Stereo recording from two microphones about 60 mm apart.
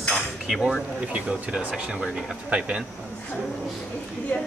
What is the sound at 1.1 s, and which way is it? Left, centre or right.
Speech, centre.